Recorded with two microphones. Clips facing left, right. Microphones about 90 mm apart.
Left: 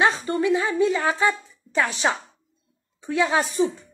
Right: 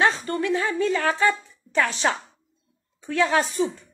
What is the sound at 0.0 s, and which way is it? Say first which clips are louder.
Speech: left 1 dB; 15° left (ahead or behind).